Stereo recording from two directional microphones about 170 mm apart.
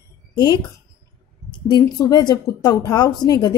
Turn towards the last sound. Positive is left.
turn(degrees=20)  # may be behind; listen again after turning